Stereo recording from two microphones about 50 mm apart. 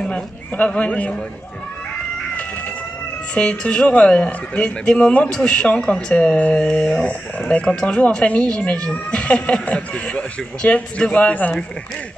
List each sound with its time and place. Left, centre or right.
0.6 s speech: left
3.3 s speech: centre